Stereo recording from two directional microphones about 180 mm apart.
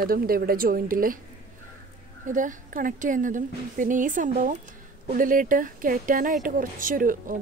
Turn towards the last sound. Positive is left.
turn(degrees=-50)  # may be behind; listen again after turning